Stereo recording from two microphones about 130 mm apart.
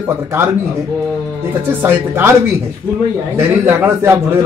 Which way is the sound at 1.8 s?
20° right (ahead or behind).